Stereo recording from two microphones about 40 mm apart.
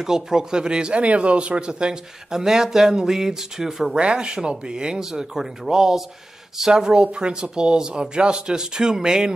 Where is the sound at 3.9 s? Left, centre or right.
Right.